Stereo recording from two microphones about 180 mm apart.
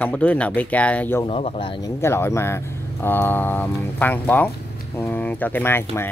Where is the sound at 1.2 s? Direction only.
35° left (ahead or behind).